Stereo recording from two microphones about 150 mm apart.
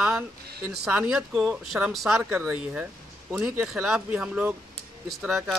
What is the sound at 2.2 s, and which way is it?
Speech, 10° right (ahead or behind).